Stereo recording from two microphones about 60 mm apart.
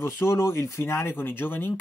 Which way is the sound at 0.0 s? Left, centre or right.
Left.